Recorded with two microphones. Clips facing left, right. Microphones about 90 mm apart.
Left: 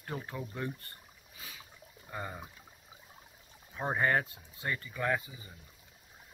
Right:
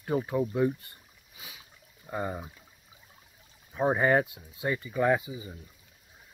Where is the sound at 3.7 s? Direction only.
15° right (ahead or behind).